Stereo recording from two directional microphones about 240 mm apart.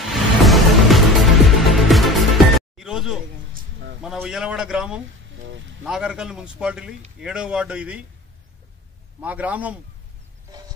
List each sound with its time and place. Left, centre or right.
0.0 s music: centre
4.0 s a man's voice: centre
9.2 s a man's voice: centre